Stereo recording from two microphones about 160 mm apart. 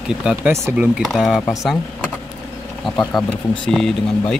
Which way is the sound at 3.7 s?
Centre (ahead or behind).